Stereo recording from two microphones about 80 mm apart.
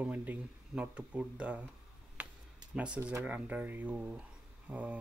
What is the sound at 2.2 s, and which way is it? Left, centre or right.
Tick-tock, centre.